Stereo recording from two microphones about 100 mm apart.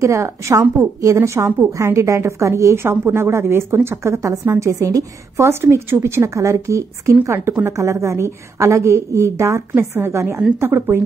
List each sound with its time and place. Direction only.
0.0 s a woman's voice: 30° right (ahead or behind)